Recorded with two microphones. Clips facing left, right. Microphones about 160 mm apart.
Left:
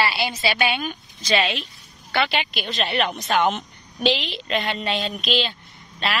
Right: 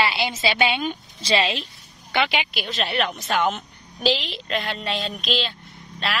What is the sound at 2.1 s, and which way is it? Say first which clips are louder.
A woman's voice: even; 15° right (ahead or behind).